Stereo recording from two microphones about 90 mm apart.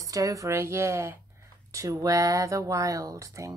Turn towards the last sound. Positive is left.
turn(degrees=-35)  # may be behind; listen again after turning